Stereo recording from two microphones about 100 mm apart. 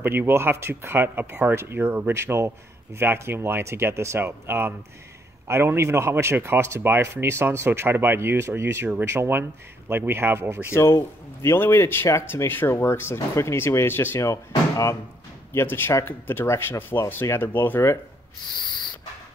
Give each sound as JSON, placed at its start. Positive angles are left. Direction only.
{"t": 0.0, "sound": "speech", "side_deg": -20}
{"t": 10.7, "sound": "speech", "side_deg": 25}
{"t": 15.5, "sound": "speech", "side_deg": 20}